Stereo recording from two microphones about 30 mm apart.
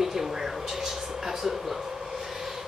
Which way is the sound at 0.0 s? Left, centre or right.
Centre.